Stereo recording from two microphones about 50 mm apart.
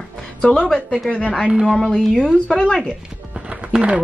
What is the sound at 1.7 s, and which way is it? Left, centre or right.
Speech, centre.